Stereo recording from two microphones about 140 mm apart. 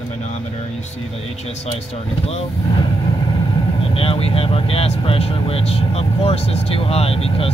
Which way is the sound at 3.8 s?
45° left (ahead or behind).